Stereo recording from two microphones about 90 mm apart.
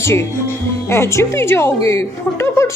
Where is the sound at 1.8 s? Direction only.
30° left (ahead or behind).